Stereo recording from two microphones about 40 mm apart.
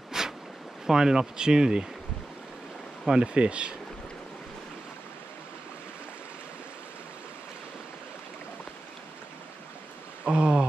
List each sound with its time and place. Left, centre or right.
0.1 s zipper: centre
0.8 s speech: centre
3.2 s speech: right
10.2 s a sound: right